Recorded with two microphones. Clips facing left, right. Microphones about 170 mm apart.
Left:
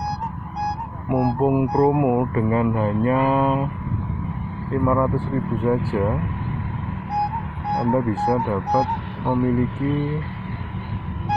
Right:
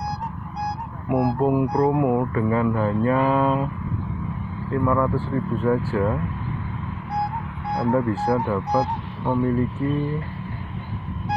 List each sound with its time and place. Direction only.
1.0 s speech: 5° right (ahead or behind)
1.4 s speech: 5° left (ahead or behind)
1.7 s speech: 20° left (ahead or behind)
4.7 s speech: 10° left (ahead or behind)
7.7 s speech: 15° left (ahead or behind)
9.2 s speech: 65° left (ahead or behind)